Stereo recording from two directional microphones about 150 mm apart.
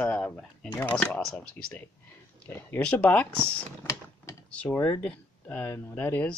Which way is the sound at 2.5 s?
10° left (ahead or behind).